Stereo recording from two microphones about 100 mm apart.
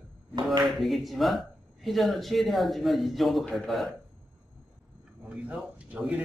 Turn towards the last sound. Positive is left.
turn(degrees=-10)  # may be behind; listen again after turning